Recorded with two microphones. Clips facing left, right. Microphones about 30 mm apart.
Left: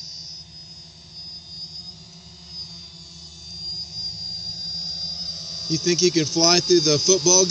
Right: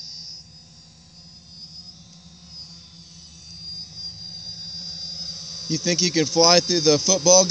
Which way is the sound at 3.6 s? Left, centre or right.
Left.